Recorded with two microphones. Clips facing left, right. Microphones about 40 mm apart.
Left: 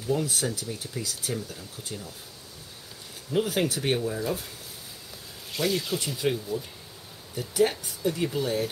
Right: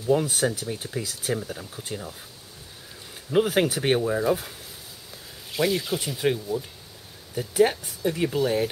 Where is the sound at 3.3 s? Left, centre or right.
Right.